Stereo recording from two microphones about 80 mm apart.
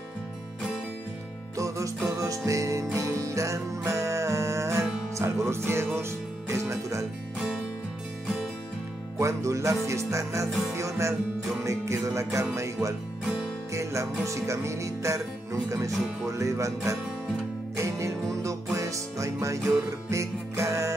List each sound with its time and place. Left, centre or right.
2.0 s music: right
6.5 s speech: right
9.2 s music: right